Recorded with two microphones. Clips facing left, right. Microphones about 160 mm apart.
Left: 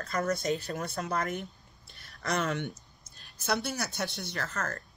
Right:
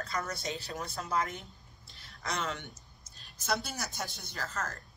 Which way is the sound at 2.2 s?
50° left (ahead or behind).